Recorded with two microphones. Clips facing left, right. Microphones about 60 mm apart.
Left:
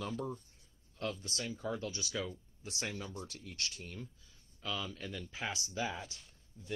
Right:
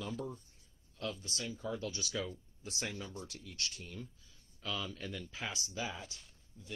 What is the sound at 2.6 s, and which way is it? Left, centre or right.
Speech, left.